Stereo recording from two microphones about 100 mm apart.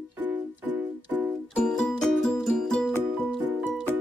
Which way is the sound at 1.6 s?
5° left (ahead or behind).